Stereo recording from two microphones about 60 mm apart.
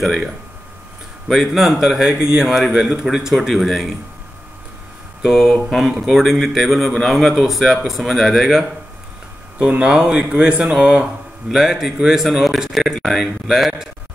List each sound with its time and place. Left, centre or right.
0.0 s speech: centre
1.3 s a man's voice: centre
5.2 s speech: centre
9.6 s a man's voice: centre
11.5 s speech: centre